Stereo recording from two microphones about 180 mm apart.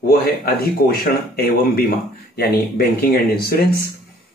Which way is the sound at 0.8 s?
55° left (ahead or behind).